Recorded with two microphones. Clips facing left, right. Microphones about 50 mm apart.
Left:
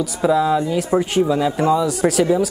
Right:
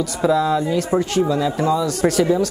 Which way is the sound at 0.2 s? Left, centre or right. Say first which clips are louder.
Left 1 dB; centre.